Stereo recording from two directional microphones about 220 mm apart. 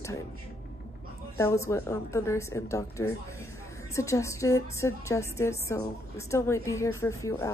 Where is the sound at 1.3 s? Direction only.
15° left (ahead or behind).